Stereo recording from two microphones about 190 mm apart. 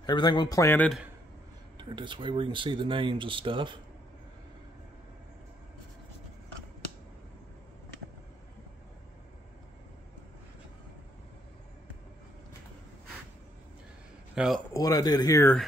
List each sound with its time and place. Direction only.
0.0 s speech: 25° left (ahead or behind)
1.8 s speech: 25° right (ahead or behind)
14.3 s a man's voice: 5° right (ahead or behind)
14.7 s speech: 20° left (ahead or behind)